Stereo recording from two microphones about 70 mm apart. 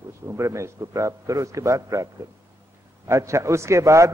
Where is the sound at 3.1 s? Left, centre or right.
Right.